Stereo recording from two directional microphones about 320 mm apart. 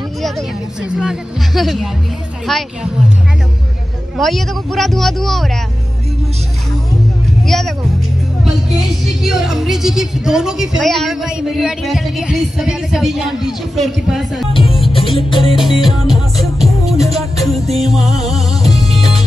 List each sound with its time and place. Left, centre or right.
0.2 s a woman's voice: centre
4.2 s a woman's voice: centre
7.4 s speech: centre
9.2 s a woman's voice: centre
14.5 s music: centre
15.5 s a woman's voice: centre
17.2 s music: centre